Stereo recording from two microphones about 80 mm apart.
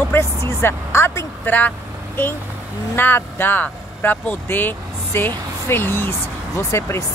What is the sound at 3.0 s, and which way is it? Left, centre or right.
Speech, left.